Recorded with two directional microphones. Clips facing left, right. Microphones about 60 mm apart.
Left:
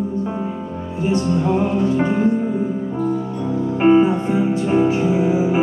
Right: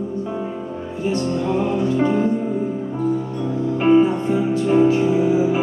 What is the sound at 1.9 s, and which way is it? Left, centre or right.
Music, left.